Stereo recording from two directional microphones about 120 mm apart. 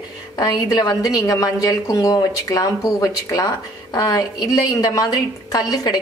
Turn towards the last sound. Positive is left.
turn(degrees=30)  # may be behind; listen again after turning